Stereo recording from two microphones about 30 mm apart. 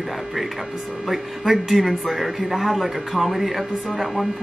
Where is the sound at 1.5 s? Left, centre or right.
Centre.